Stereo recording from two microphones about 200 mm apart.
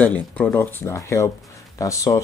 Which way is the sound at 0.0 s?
10° left (ahead or behind).